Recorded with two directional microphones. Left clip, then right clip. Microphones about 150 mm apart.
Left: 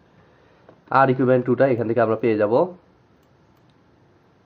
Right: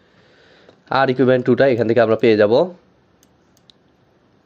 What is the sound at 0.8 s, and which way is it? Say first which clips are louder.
Speech: right 2 dB; 40° right (ahead or behind).